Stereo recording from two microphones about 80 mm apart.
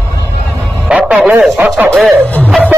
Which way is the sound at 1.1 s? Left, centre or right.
Centre.